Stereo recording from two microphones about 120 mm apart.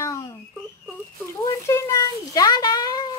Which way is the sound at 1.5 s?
25° left (ahead or behind).